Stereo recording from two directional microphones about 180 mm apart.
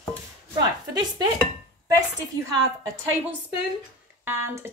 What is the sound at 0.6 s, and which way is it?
Speech, 20° right (ahead or behind).